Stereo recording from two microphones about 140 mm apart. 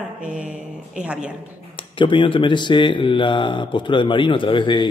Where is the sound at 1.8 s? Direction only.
35° left (ahead or behind).